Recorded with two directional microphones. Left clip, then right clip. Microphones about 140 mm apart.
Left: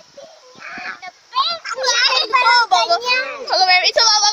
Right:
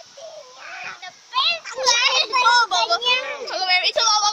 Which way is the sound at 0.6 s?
20° left (ahead or behind).